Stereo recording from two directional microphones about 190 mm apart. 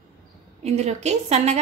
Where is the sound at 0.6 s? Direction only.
35° right (ahead or behind).